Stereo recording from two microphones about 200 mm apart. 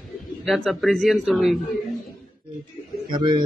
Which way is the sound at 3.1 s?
25° right (ahead or behind).